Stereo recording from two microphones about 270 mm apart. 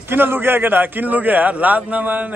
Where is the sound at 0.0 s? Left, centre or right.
Centre.